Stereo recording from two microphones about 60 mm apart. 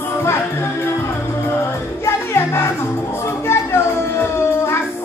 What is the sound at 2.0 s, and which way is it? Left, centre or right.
Music, left.